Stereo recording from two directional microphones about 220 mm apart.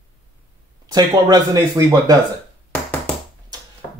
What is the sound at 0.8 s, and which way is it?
Speech, 15° right (ahead or behind).